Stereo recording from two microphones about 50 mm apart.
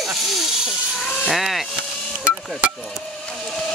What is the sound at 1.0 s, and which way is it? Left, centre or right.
Sheep, centre.